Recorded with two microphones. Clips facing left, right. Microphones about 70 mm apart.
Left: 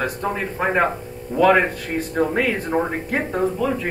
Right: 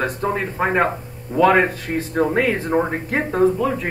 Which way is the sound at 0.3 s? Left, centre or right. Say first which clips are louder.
Right 1 dB; centre.